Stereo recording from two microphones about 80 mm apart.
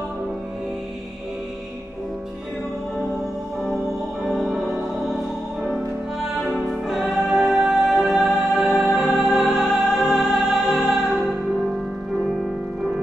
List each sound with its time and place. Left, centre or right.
4.3 s music: centre
6.7 s music: centre